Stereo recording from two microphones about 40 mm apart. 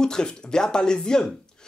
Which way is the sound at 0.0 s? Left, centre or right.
Centre.